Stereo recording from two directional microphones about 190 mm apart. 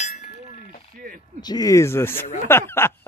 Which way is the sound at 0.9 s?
45° right (ahead or behind).